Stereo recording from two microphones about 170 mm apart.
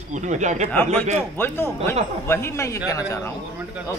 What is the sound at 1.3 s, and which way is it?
A man's voice, 10° left (ahead or behind).